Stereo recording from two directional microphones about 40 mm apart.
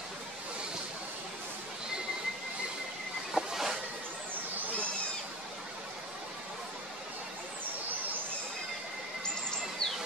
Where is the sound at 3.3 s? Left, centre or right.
Centre.